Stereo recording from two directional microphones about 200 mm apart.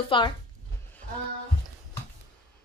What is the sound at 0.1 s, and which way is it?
Speech, 25° left (ahead or behind).